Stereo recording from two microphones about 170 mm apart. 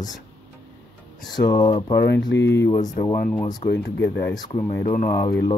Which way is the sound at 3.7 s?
80° left.